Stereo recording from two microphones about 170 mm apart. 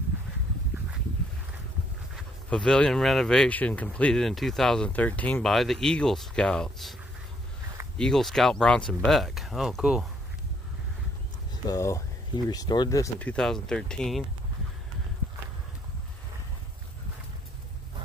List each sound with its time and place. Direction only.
2.1 s speech: 5° left (ahead or behind)
8.0 s speech: centre (ahead or behind)
11.7 s speech: 20° left (ahead or behind)
13.2 s speech: 5° left (ahead or behind)